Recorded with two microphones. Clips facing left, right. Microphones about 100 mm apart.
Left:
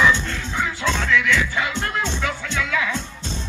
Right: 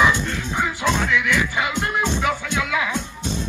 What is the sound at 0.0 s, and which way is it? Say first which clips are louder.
Music: even; 15° right (ahead or behind).